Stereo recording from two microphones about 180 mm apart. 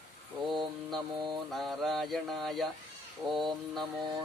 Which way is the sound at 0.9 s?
25° right (ahead or behind).